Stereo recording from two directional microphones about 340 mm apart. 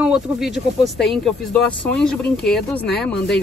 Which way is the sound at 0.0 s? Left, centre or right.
Centre.